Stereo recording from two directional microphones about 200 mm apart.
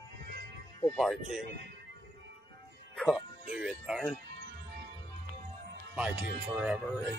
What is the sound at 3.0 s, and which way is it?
Speech, centre (ahead or behind).